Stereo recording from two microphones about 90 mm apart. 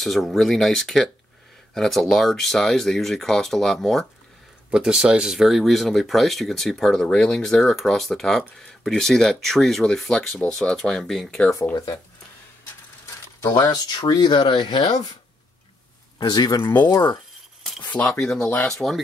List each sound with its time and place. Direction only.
0.0 s speech: centre (ahead or behind)
4.6 s speech: 10° right (ahead or behind); by 11.5 s 10° left (ahead or behind)
11.7 s speech: 50° left (ahead or behind)
13.4 s speech: 45° left (ahead or behind)
16.2 s speech: 50° left (ahead or behind)
18.2 s speech: 10° left (ahead or behind)